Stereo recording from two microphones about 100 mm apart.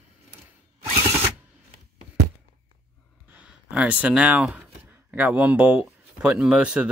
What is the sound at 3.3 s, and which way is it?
Speech, 10° right (ahead or behind).